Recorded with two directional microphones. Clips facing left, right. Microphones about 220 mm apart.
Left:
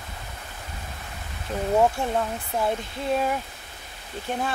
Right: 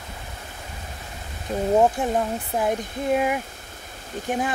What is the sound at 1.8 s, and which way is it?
Speech, 15° right (ahead or behind).